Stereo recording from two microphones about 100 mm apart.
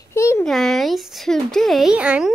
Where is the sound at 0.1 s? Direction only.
30° left (ahead or behind).